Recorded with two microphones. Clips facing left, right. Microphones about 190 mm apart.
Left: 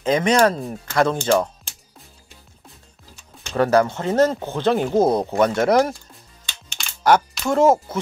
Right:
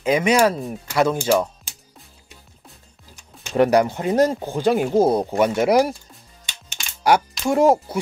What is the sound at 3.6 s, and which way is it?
Speech, 15° right (ahead or behind).